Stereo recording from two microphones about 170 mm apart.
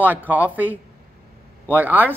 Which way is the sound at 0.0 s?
10° right (ahead or behind).